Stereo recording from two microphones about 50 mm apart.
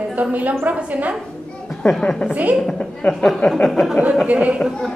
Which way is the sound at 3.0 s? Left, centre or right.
Left.